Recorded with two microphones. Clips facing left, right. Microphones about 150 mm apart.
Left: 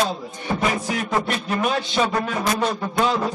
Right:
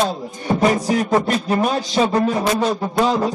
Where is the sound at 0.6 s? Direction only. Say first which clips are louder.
Right 8 dB; 35° right (ahead or behind).